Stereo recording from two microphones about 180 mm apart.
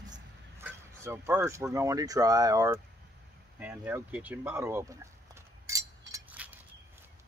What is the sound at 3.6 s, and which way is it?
Bird, 10° right (ahead or behind).